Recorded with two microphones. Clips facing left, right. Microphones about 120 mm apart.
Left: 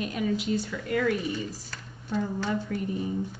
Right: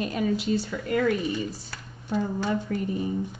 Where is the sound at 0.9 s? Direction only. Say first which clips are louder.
Right 2 dB; 45° right (ahead or behind).